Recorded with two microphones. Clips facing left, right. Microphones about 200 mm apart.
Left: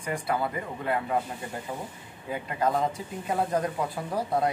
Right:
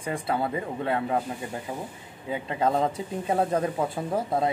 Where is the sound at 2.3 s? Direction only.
25° right (ahead or behind).